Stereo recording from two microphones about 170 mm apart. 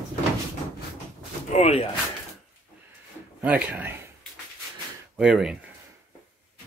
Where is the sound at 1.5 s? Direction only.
40° left (ahead or behind).